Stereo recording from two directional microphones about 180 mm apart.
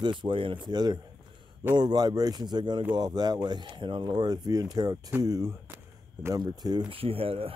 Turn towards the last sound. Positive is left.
turn(degrees=-30)  # may be behind; listen again after turning